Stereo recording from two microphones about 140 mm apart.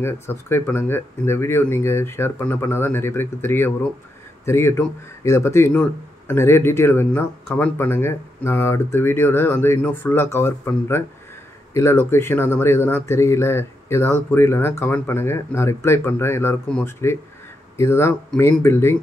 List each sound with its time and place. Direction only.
0.0 s speech: 15° left (ahead or behind)